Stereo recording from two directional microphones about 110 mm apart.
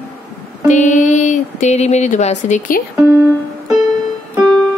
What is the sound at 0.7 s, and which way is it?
Speech, 90° left.